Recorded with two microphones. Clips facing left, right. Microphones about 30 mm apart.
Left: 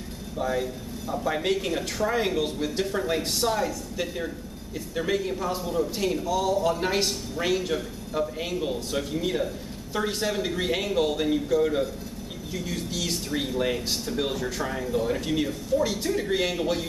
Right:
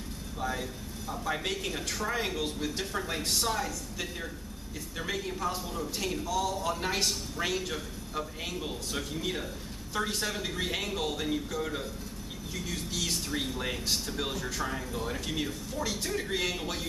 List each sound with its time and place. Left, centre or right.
0.4 s a man's voice: centre